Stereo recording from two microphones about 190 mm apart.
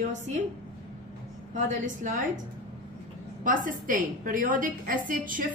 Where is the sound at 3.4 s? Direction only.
45° right (ahead or behind).